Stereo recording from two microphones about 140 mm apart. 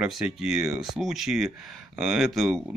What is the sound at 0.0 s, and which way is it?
Speech, 5° right (ahead or behind).